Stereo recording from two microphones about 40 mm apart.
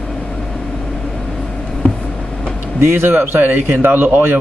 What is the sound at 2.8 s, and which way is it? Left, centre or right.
A man's voice, right.